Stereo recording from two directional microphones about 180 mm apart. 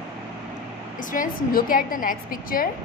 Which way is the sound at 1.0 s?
45° left (ahead or behind).